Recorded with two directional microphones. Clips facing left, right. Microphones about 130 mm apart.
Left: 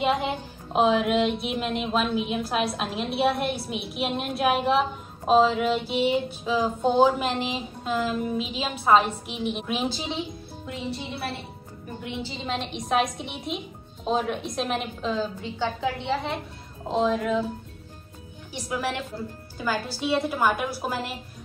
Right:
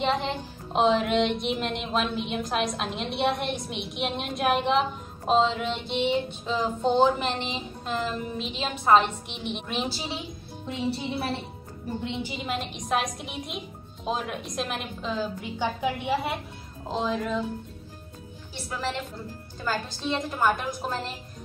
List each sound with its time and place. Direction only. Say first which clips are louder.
0.0 s music: left 2 dB; 10° left (ahead or behind)
12.0 s a woman's voice: left 1 dB; 25° right (ahead or behind)
12.3 s music: left 1 dB; 5° right (ahead or behind)
15.4 s a woman's voice: even; 15° right (ahead or behind)
16.9 s music: left 4 dB; centre (ahead or behind)
18.5 s a woman's voice: left 3 dB; 10° left (ahead or behind)